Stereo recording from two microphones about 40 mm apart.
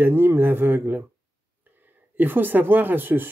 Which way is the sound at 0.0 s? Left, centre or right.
Right.